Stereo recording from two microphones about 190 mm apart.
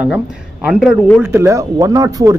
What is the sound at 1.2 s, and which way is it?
Speech, 15° right (ahead or behind).